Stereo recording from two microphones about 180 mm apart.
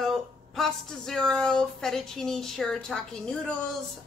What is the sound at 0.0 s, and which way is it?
A woman's voice, centre (ahead or behind).